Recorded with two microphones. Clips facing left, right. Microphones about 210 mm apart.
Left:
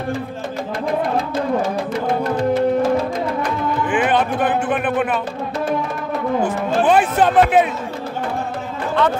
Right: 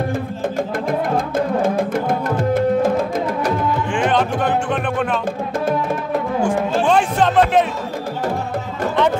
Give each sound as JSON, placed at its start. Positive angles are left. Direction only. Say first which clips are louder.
{"t": 1.1, "sound": "music", "louder": "right 1 dB", "side_deg": -50}
{"t": 3.9, "sound": "music", "louder": "left 1 dB", "side_deg": 5}
{"t": 6.9, "sound": "speech", "louder": "left 3 dB", "side_deg": 5}